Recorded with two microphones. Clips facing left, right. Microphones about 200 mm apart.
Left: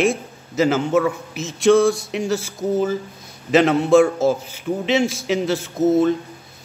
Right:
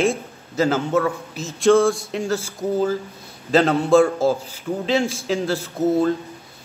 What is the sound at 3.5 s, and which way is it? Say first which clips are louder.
Speech: left 2 dB; 15° left (ahead or behind).